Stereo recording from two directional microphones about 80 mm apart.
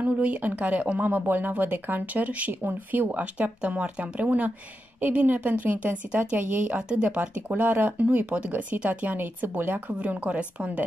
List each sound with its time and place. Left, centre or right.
0.0 s speech: centre